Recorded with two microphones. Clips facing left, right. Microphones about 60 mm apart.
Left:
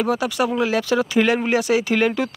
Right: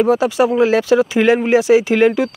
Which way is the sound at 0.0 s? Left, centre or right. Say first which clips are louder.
Right 7 dB; centre.